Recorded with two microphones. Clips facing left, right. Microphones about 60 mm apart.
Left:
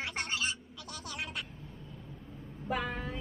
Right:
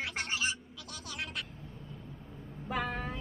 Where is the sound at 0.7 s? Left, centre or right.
Centre.